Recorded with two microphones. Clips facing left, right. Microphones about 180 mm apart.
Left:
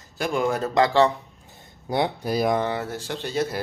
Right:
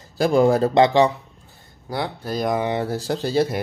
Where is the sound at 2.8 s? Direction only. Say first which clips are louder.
Right 6 dB; 35° right (ahead or behind).